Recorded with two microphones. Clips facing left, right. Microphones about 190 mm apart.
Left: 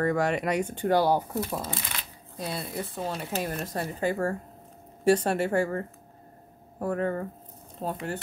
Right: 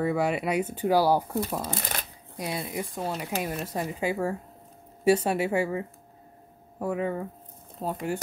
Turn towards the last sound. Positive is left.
turn(degrees=-10)  # may be behind; listen again after turning